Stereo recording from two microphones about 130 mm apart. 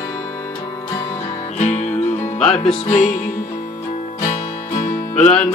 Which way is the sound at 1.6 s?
60° left (ahead or behind).